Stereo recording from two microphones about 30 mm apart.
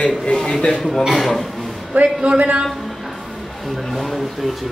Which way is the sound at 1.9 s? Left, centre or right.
Right.